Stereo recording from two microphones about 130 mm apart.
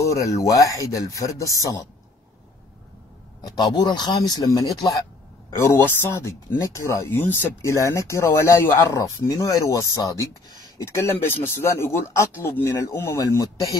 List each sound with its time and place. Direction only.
0.0 s speech: 25° left (ahead or behind)
3.3 s speech: 35° left (ahead or behind)